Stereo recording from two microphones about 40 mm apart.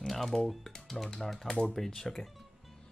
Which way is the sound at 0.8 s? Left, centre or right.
Centre.